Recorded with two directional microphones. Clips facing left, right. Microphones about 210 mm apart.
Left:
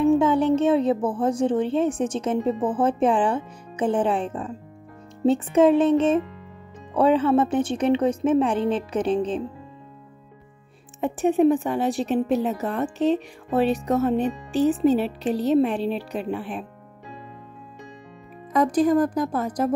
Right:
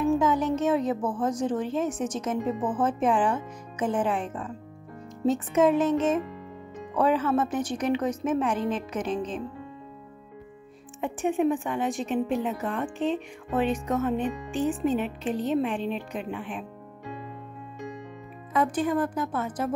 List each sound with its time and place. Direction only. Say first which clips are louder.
0.0 s speech: left 5 dB; 30° left (ahead or behind)
11.0 s a woman's voice: left 6 dB; 35° left (ahead or behind)
18.5 s a woman's voice: left 6 dB; 40° left (ahead or behind)